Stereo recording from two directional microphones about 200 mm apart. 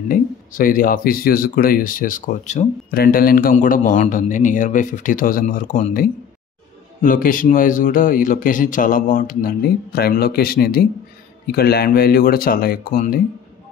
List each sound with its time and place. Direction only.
0.1 s speech: 45° left (ahead or behind)
2.9 s speech: 50° left (ahead or behind)